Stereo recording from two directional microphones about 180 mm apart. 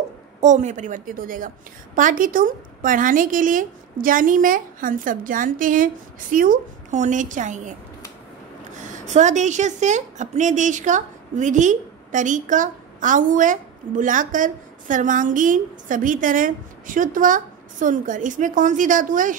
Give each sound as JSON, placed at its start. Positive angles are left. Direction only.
{"t": 0.4, "sound": "a woman's voice", "side_deg": -40}
{"t": 8.8, "sound": "a woman's voice", "side_deg": -40}